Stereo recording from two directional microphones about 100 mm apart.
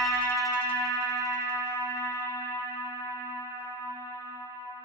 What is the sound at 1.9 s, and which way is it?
Music, 30° left (ahead or behind).